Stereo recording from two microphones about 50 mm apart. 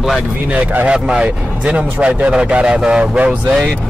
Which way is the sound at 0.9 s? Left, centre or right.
Centre.